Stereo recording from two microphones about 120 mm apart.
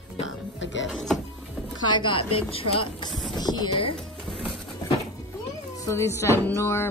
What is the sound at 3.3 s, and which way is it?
Speech, 35° left (ahead or behind).